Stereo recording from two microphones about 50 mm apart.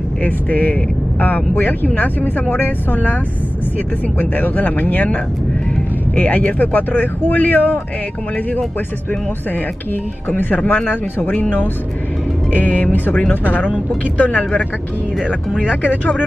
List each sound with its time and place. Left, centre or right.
0.2 s speech: left
4.2 s speech: left
10.3 s speech: left
12.5 s speech: left
15.6 s speech: left